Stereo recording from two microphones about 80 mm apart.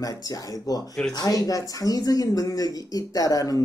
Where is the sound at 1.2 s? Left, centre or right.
Left.